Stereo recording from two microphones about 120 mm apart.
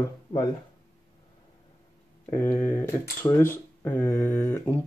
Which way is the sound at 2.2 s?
20° left (ahead or behind).